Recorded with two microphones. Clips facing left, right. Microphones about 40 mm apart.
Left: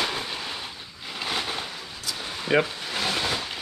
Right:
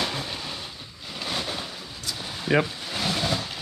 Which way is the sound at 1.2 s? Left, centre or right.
Centre.